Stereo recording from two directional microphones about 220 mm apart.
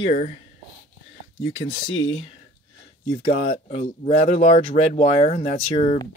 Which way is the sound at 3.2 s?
30° left (ahead or behind).